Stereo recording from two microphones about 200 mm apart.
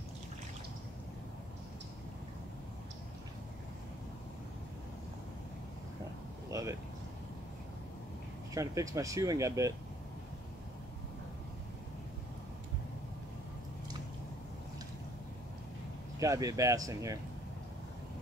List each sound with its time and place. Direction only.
6.5 s a sound: 15° right (ahead or behind)
8.5 s speech: 15° right (ahead or behind)
16.2 s speech: 15° right (ahead or behind)